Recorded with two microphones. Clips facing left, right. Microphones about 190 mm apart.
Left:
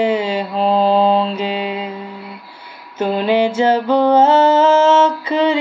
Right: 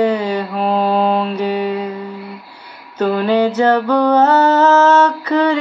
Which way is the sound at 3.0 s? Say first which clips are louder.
Right 1 dB; 20° left (ahead or behind).